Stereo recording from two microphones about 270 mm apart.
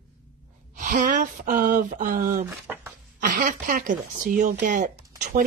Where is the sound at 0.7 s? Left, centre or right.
Right.